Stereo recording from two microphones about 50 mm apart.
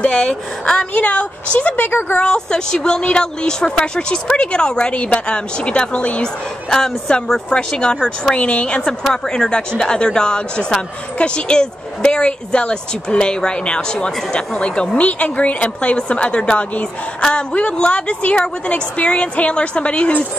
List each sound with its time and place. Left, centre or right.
0.0 s speech: centre
0.9 s speech: left
1.9 s speech: left
2.1 s speech: centre